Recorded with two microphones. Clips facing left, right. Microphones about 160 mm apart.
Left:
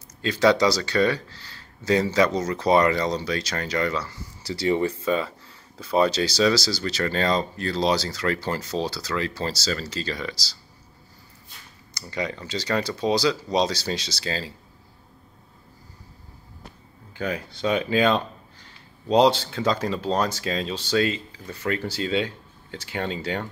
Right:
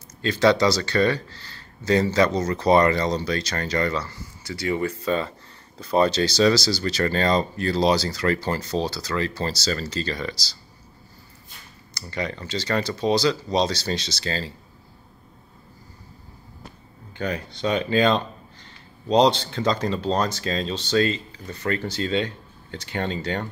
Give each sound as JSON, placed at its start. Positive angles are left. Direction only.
{"t": 0.2, "sound": "speech", "side_deg": 10}
{"t": 4.4, "sound": "speech", "side_deg": 30}
{"t": 5.0, "sound": "speech", "side_deg": 5}
{"t": 11.9, "sound": "speech", "side_deg": 10}
{"t": 17.1, "sound": "speech", "side_deg": 5}